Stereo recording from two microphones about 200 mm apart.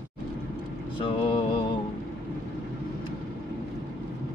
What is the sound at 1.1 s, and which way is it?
Mantra, 25° left (ahead or behind).